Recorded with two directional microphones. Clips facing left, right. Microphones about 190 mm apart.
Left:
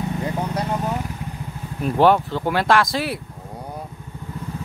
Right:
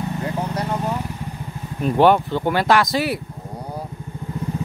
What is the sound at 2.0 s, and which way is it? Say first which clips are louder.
Speech: right 1 dB; centre (ahead or behind).